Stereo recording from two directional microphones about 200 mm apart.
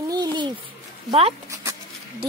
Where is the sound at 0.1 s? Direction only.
20° right (ahead or behind).